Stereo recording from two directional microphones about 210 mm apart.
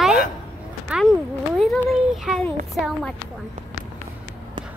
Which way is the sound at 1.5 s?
Centre (ahead or behind).